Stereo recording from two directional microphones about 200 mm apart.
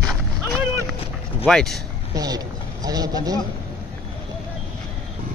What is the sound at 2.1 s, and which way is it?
A man's voice, 20° right (ahead or behind).